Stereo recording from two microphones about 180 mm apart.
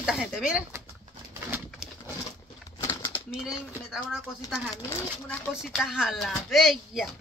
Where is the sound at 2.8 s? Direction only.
15° left (ahead or behind).